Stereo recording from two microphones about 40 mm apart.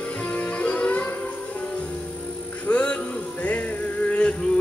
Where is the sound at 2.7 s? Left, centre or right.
Left.